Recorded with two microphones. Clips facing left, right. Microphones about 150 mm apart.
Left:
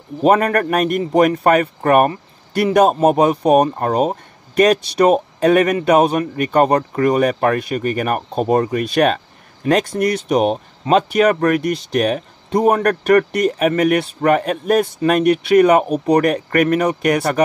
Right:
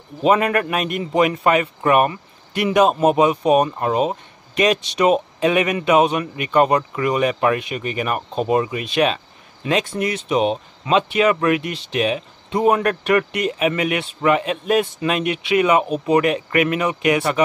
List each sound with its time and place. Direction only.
0.2 s a man's voice: 45° left (ahead or behind)